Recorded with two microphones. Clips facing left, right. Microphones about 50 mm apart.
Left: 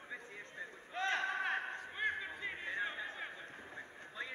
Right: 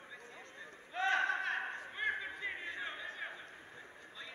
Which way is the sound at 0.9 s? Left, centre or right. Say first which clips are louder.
Right 3 dB; centre.